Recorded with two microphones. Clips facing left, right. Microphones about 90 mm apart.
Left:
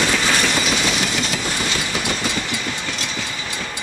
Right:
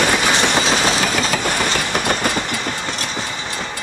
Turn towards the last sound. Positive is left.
turn(degrees=-40)  # may be behind; listen again after turning